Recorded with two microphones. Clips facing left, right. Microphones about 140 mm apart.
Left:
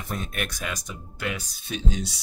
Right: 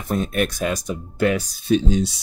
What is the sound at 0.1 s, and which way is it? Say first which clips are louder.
Speech: right 11 dB; 35° right (ahead or behind).